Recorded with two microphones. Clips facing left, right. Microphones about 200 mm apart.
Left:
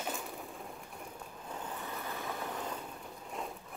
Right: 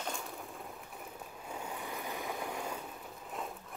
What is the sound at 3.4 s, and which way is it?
Sewing machine, centre (ahead or behind).